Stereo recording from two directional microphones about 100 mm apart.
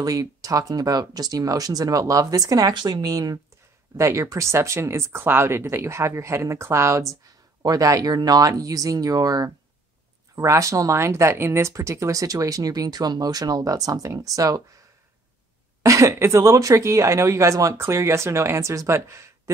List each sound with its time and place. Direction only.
0.0 s speech: 35° right (ahead or behind)
15.8 s speech: 30° right (ahead or behind)